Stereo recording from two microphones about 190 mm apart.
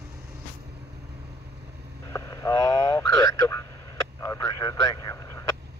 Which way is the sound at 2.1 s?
15° left (ahead or behind).